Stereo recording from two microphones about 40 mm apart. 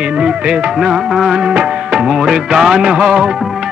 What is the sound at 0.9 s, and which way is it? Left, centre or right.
Music, centre.